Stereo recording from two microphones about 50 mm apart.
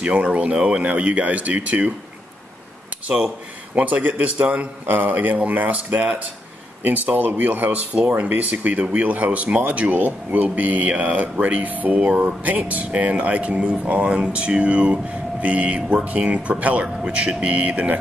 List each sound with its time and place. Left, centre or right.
0.0 s speech: right
3.7 s speech: right